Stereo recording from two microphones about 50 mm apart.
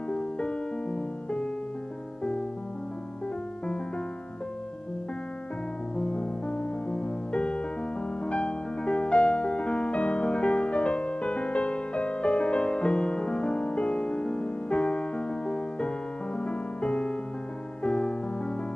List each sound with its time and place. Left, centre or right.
0.1 s music: left
5.9 s music: left